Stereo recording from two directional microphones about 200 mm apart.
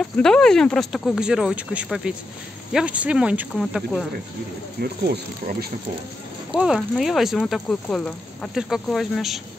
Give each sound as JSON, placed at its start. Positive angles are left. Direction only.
{"t": 0.0, "sound": "speech", "side_deg": 5}
{"t": 5.0, "sound": "speech", "side_deg": -50}
{"t": 6.5, "sound": "speech", "side_deg": 0}